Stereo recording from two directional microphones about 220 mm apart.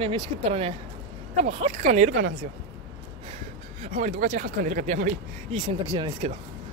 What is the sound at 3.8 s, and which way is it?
Speech, 30° right (ahead or behind).